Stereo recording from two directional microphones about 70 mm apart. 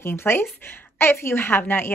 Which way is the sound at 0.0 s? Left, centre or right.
Left.